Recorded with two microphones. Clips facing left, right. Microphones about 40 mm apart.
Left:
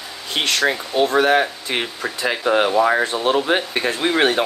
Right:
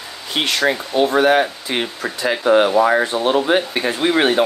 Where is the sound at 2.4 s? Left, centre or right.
Right.